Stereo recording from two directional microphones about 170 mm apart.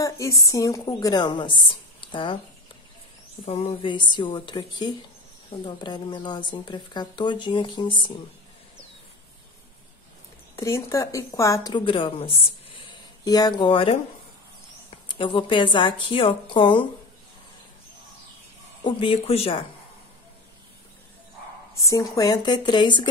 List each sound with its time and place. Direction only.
0.0 s a woman's voice: 20° left (ahead or behind)
3.4 s speech: 35° left (ahead or behind)
10.5 s speech: 15° left (ahead or behind)
18.9 s speech: 30° left (ahead or behind)
21.8 s speech: 20° left (ahead or behind)